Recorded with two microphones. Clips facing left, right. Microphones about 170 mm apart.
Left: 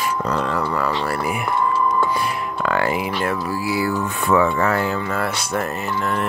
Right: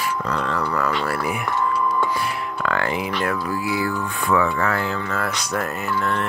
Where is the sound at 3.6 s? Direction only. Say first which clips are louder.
Left 3 dB; 5° left (ahead or behind).